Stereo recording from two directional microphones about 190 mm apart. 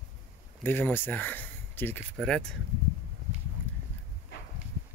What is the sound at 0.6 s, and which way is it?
Speech, 10° left (ahead or behind).